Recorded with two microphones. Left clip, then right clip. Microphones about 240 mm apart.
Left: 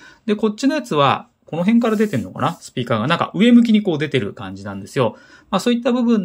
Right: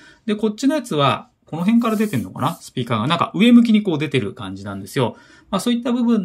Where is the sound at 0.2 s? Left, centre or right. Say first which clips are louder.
Left 2 dB; centre.